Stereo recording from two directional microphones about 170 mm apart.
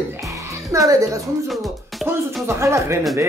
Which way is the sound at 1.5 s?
Centre (ahead or behind).